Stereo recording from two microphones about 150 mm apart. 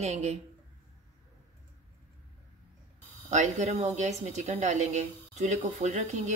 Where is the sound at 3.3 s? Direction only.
55° right (ahead or behind).